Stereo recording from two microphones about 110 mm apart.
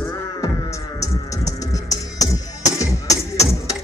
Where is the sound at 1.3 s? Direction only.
30° left (ahead or behind).